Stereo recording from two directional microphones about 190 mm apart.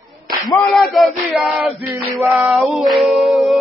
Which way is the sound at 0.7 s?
Centre (ahead or behind).